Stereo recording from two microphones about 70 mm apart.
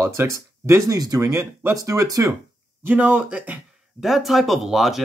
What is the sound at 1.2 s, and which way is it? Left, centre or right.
Speech, right.